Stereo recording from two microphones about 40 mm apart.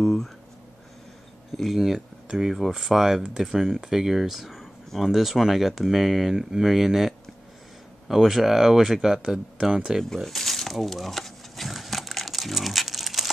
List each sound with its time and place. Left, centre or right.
0.0 s speech: centre
1.5 s speech: centre
10.0 s a sound: centre